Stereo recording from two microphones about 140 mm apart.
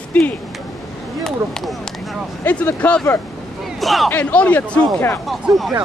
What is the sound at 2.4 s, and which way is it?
Speech, 10° left (ahead or behind).